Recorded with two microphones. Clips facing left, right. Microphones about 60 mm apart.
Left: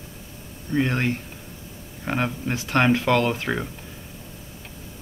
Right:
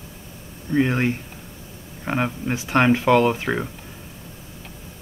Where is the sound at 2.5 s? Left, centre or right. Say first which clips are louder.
Right 2 dB; centre.